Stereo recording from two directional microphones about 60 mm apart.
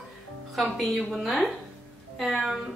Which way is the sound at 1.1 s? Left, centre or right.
Centre.